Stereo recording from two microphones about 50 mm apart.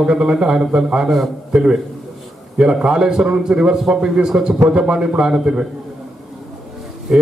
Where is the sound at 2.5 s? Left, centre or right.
Centre.